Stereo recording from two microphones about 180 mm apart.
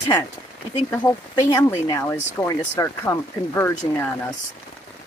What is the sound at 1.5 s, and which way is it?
Speech, 15° left (ahead or behind).